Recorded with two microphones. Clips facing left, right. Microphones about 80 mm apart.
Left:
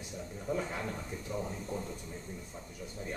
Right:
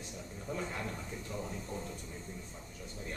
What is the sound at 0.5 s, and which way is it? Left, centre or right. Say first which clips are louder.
Speech: left 4 dB; centre.